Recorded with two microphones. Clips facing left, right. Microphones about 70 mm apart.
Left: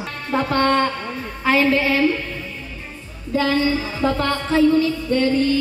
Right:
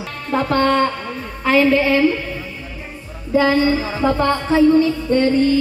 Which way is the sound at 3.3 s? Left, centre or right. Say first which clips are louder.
Right 4 dB; right.